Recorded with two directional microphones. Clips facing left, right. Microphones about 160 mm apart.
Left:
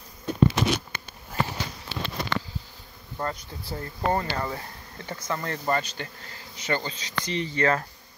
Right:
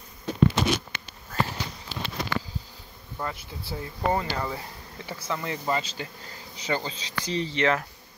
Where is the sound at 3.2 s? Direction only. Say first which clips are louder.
Left 2 dB; 5° right (ahead or behind).